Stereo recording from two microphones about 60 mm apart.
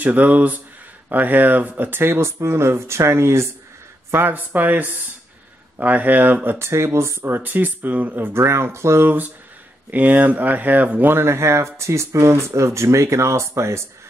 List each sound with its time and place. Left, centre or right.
0.0 s speech: right
4.1 s speech: right
6.6 s speech: right
7.2 s speech: right
9.8 s speech: right
11.1 s speech: right